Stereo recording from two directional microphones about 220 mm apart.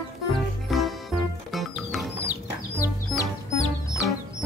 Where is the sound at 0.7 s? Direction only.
Centre (ahead or behind).